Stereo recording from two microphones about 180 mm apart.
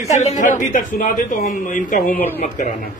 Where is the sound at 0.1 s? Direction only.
40° left (ahead or behind).